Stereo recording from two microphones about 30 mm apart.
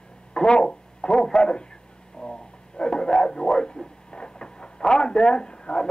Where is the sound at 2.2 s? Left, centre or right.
Left.